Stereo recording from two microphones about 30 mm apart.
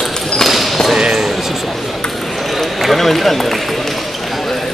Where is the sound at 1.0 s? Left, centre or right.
Right.